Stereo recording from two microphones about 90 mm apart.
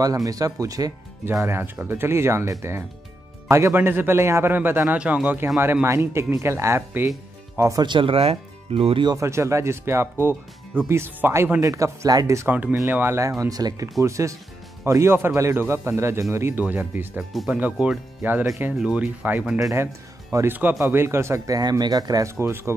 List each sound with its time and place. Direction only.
0.0 s speech: 40° right (ahead or behind)
1.3 s speech: 30° right (ahead or behind)
5.9 s speech: 35° right (ahead or behind)
7.8 s speech: 70° right (ahead or behind); by 9.0 s 90° right
9.1 s speech: 35° right (ahead or behind)
11.6 s speech: 35° right (ahead or behind)
12.8 s speech: 25° right (ahead or behind)
13.6 s speech: 45° right (ahead or behind)
16.5 s speech: 20° right (ahead or behind)
18.6 s speech: 10° right (ahead or behind); by 21.5 s 30° right (ahead or behind)
21.5 s speech: 50° right (ahead or behind)
22.4 s speech: 30° right (ahead or behind)